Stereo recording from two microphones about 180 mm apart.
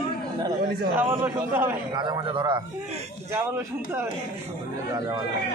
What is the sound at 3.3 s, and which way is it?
Speech, 10° right (ahead or behind).